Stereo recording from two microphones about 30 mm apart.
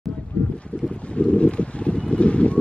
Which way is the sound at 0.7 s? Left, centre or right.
Left.